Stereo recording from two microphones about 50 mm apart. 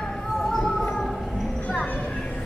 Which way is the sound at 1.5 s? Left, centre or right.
Left.